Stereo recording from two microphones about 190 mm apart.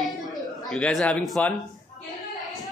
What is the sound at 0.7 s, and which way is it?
Speech, 5° left (ahead or behind).